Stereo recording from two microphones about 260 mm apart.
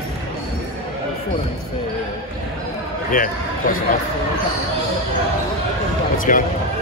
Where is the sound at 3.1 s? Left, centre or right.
Left.